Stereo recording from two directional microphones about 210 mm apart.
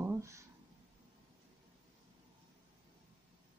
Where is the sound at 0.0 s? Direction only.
15° right (ahead or behind).